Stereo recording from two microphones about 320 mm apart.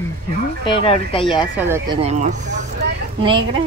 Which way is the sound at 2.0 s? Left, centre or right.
Right.